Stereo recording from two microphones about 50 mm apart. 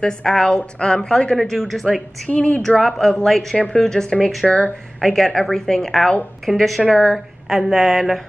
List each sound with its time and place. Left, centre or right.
0.0 s a woman's voice: centre
1.4 s a woman's voice: centre
2.2 s speech: left
2.8 s a woman's voice: centre; by 4.7 s left
5.0 s a woman's voice: centre